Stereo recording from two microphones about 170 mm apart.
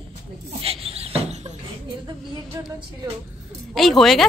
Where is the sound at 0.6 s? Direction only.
35° right (ahead or behind).